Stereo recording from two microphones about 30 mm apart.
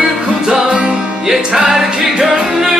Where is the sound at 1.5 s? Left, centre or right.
Centre.